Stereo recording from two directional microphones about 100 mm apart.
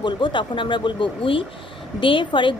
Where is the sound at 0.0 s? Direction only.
50° left (ahead or behind).